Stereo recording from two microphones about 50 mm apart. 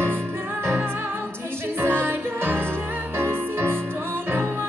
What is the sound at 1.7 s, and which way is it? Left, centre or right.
Music, right.